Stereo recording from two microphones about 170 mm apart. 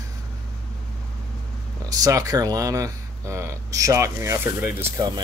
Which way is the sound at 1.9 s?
20° right (ahead or behind).